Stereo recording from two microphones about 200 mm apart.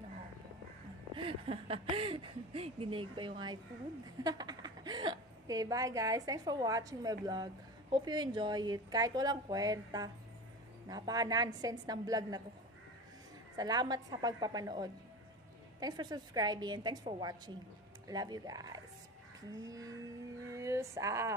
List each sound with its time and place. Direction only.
1.1 s a woman's voice: 25° right (ahead or behind)
13.6 s a woman's voice: 20° right (ahead or behind)
18.0 s a woman's voice: 20° right (ahead or behind)
19.5 s a sound: 15° right (ahead or behind)